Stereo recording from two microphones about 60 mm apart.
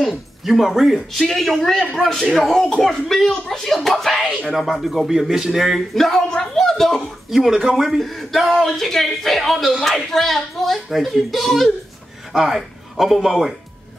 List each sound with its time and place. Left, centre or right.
0.1 s a man's voice: centre
7.2 s a man's voice: centre